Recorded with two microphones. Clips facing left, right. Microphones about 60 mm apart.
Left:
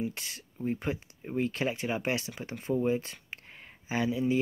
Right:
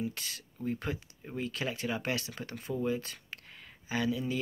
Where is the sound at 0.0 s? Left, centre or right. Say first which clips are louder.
Left 2 dB; left.